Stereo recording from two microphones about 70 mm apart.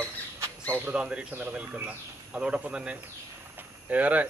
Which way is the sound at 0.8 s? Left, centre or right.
Centre.